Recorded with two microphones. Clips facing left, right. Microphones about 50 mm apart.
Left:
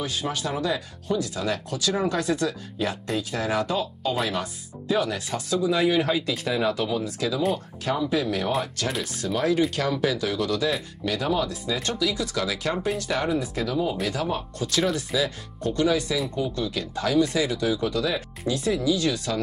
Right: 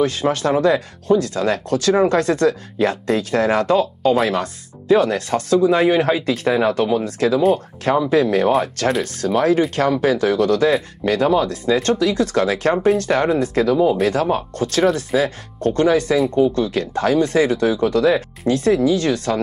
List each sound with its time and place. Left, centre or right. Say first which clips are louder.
0.0 s speech: right 11 dB; right